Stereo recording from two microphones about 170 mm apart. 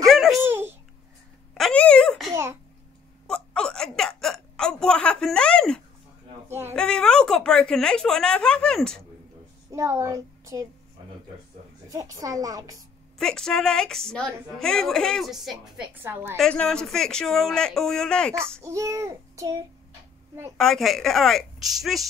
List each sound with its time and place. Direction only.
0.0 s a sound: centre (ahead or behind)
0.5 s babbling: 15° right (ahead or behind)
1.5 s a sound: 5° left (ahead or behind)
2.3 s child singing: 15° right (ahead or behind)
3.3 s hiccup: 5° left (ahead or behind)
6.7 s a woman's voice: 5° left (ahead or behind)
9.7 s speech: 15° right (ahead or behind)
11.9 s a woman's voice: 20° right (ahead or behind)
13.2 s a woman's voice: 5° left (ahead or behind); by 16.3 s 10° right (ahead or behind)
16.3 s a woman's voice: 5° left (ahead or behind)
18.6 s child singing: 20° right (ahead or behind)
20.5 s a woman's voice: centre (ahead or behind)